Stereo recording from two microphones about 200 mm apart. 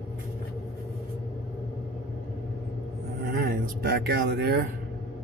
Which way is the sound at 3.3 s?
50° right (ahead or behind).